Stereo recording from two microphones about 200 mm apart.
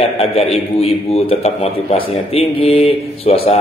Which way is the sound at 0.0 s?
30° left (ahead or behind).